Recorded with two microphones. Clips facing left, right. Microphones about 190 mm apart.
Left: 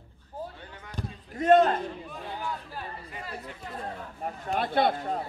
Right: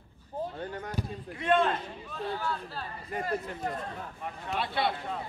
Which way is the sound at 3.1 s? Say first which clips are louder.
Right 7 dB; 45° right (ahead or behind).